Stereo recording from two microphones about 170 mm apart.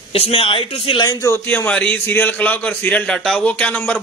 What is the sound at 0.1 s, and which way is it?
Speech, 35° left (ahead or behind).